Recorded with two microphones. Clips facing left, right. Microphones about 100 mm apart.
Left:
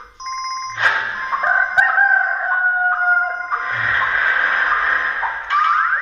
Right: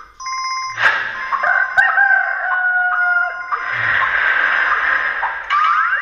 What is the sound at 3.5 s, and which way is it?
Music, 15° left (ahead or behind).